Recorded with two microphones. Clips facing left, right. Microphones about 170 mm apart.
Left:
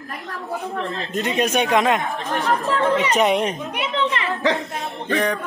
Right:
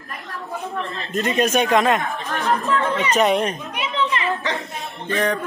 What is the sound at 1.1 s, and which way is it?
Speech, 15° left (ahead or behind).